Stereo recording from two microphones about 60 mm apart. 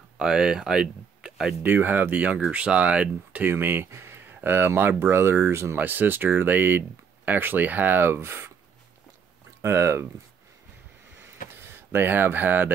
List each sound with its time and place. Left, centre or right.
0.2 s speech: centre
1.6 s speech: right
3.4 s speech: right
5.5 s speech: right
5.8 s speech: right
9.6 s speech: right
11.1 s a sound: right